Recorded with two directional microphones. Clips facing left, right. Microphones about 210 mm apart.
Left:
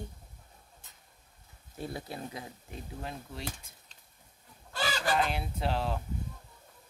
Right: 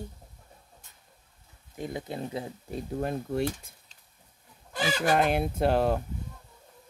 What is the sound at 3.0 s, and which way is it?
Fowl, 55° right (ahead or behind).